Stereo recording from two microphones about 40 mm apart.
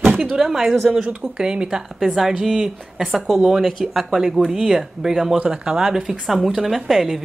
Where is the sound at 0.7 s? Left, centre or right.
Centre.